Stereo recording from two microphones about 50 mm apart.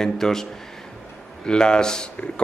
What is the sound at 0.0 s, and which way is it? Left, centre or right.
A man's voice, centre.